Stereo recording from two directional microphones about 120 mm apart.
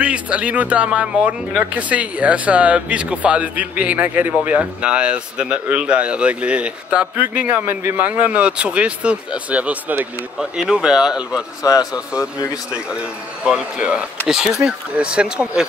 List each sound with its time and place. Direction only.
0.0 s a man's voice: 10° right (ahead or behind)
11.6 s a man's voice: 30° left (ahead or behind)
12.7 s a man's voice: 10° right (ahead or behind)